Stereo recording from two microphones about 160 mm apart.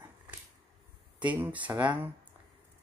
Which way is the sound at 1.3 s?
10° right (ahead or behind).